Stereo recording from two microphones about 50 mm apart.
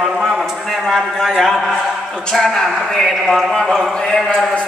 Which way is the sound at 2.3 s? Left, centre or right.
Centre.